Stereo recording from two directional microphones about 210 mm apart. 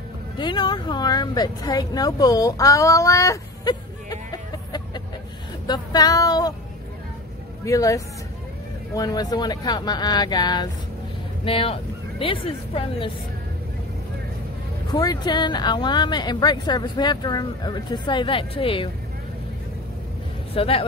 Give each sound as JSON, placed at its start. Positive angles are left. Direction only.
{"t": 0.4, "sound": "speech", "side_deg": 20}
{"t": 7.6, "sound": "a woman's voice", "side_deg": 15}
{"t": 14.9, "sound": "speech", "side_deg": 20}
{"t": 20.5, "sound": "speech", "side_deg": 25}